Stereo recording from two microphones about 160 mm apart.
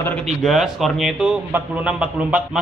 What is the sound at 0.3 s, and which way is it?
A man's voice, centre (ahead or behind).